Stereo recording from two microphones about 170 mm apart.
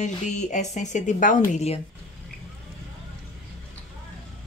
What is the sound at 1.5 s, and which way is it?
Speech, 40° left (ahead or behind).